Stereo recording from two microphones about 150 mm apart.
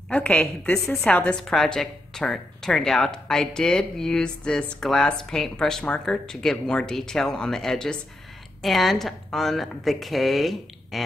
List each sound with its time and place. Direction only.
0.1 s a woman's voice: 10° left (ahead or behind)